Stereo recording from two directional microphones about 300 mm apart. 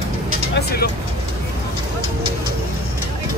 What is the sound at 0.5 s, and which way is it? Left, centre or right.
Speech, left.